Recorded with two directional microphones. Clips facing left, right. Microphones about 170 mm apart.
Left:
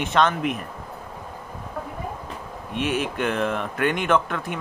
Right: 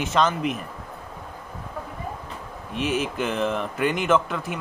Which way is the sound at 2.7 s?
Centre (ahead or behind).